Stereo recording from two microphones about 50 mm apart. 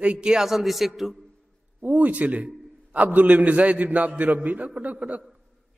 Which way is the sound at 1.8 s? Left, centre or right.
Right.